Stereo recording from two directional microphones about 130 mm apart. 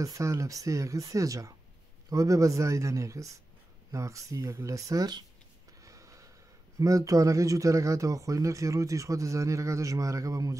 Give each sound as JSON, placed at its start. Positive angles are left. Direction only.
{"t": 0.0, "sound": "speech", "side_deg": -25}
{"t": 5.8, "sound": "snort", "side_deg": -25}
{"t": 6.8, "sound": "speech", "side_deg": -25}